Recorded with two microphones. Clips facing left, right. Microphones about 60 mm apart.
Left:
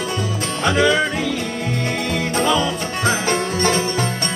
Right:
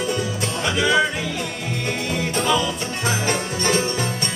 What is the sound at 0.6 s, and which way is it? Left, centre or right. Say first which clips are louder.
Music: left 6 dB; left.